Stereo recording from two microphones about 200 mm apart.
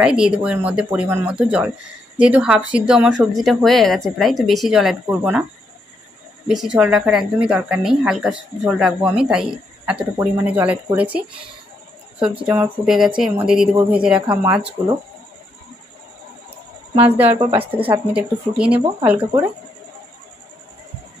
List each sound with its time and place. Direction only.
0.0 s a woman's voice: 5° right (ahead or behind)
6.4 s a woman's voice: 5° right (ahead or behind)
14.2 s a woman's voice: 20° right (ahead or behind)
14.5 s speech: 5° right (ahead or behind)
17.4 s a woman's voice: 25° right (ahead or behind)
18.1 s a woman's voice: 5° right (ahead or behind)